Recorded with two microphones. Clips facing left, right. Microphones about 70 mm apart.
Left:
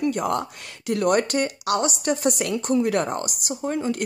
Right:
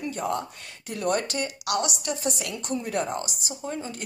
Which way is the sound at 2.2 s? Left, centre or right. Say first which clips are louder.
Left 7 dB; left.